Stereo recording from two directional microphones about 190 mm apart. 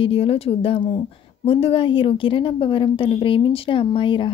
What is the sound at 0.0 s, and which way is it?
A woman's voice, 30° left (ahead or behind).